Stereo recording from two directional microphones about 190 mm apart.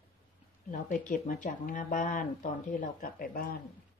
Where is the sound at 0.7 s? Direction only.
45° left (ahead or behind).